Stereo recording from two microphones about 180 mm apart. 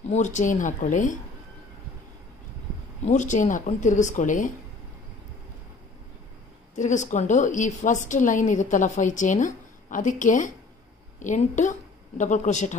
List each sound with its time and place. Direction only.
0.1 s a woman's voice: 40° left (ahead or behind)
3.1 s a woman's voice: 45° left (ahead or behind)
6.7 s a woman's voice: 45° left (ahead or behind)